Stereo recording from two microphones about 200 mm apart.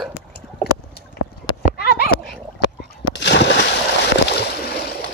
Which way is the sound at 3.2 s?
60° left (ahead or behind).